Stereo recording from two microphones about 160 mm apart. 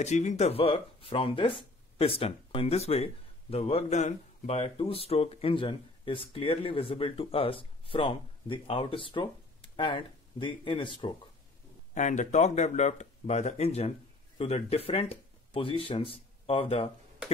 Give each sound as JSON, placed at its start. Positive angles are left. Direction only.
{"t": 0.0, "sound": "speech", "side_deg": 45}
{"t": 11.9, "sound": "speech", "side_deg": 50}